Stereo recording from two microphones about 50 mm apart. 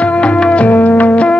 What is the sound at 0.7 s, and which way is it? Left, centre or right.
Music, left.